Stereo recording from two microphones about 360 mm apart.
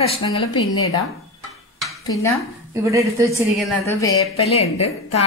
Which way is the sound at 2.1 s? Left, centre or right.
Centre.